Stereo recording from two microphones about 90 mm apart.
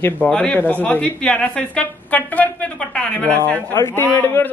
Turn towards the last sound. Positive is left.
turn(degrees=20)  # may be behind; listen again after turning